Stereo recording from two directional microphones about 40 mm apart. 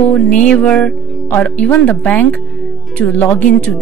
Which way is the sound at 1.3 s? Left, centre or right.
Left.